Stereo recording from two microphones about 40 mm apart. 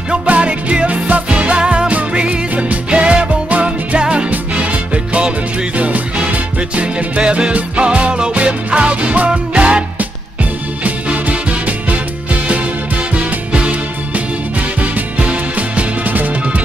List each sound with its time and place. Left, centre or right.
0.3 s music: right
10.8 s music: right
13.1 s music: right
16.1 s music: right